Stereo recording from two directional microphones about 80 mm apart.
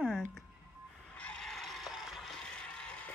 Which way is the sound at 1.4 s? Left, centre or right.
Centre.